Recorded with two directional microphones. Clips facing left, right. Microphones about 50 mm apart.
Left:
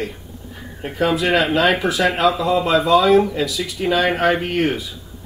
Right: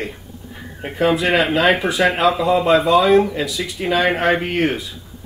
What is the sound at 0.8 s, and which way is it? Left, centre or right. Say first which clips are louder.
Speech: right 1 dB; centre.